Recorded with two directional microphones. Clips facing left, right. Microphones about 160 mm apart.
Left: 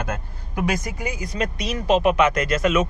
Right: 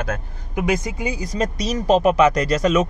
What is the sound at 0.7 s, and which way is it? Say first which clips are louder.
Speech: right 4 dB; 25° right (ahead or behind).